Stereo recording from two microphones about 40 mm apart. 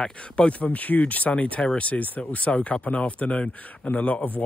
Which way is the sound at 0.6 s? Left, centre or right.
Left.